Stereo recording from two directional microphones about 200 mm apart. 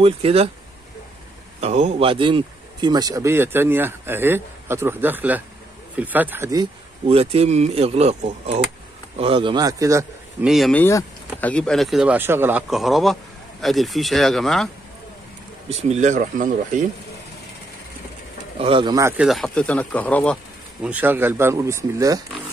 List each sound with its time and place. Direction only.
0.0 s speech: 30° right (ahead or behind)
1.6 s a man's voice: 35° right (ahead or behind); by 10.0 s 15° right (ahead or behind)
10.4 s speech: centre (ahead or behind)
15.9 s speech: 35° right (ahead or behind)
18.6 s speech: 25° right (ahead or behind)
19.2 s speech: centre (ahead or behind)
20.8 s a man's voice: 10° right (ahead or behind)